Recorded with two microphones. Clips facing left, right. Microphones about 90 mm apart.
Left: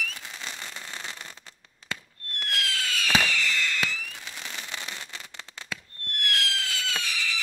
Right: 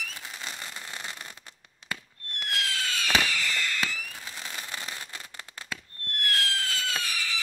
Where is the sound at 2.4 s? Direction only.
25° right (ahead or behind).